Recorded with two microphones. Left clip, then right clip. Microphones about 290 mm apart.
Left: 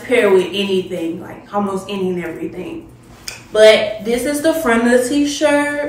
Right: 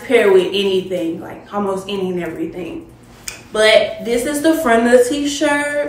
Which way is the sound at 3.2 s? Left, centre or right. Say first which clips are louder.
Left 4 dB; centre.